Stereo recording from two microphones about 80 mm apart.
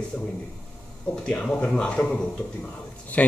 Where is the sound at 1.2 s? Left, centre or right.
Centre.